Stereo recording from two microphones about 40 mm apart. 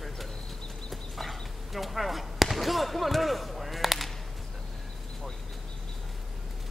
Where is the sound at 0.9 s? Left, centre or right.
Centre.